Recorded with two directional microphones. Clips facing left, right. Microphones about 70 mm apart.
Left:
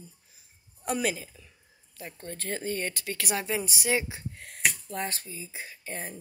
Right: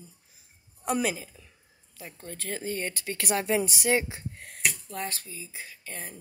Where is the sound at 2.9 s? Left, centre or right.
Right.